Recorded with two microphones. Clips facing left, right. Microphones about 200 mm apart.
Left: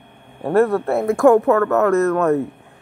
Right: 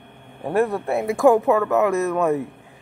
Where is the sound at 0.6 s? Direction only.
60° left (ahead or behind).